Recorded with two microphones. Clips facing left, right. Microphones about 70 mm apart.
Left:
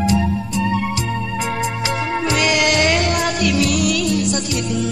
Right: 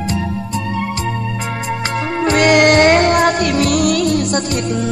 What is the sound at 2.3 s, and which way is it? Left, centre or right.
Music, right.